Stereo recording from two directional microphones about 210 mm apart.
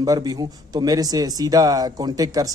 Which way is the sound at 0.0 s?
15° right (ahead or behind).